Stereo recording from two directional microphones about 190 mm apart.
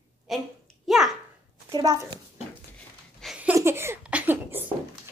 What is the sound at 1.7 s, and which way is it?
Speech, 20° right (ahead or behind).